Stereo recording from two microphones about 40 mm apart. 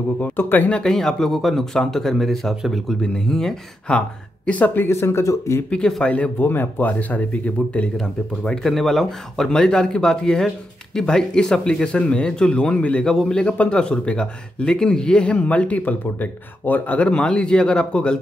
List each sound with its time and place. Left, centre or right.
0.4 s speech: left
0.8 s speech: centre
3.0 s speech: centre
3.9 s speech: left
4.5 s speech: left
4.7 s speech: left
6.0 s speech: left
6.4 s speech: left
6.9 s speech: left
8.5 s speech: centre
11.7 s speech: left
15.4 s speech: left
15.8 s speech: left
17.1 s speech: left